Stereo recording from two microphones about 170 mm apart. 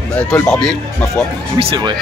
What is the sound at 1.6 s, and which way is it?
Speech, 30° right (ahead or behind).